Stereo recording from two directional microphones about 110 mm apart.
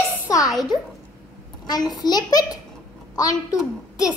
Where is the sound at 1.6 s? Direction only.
40° left (ahead or behind).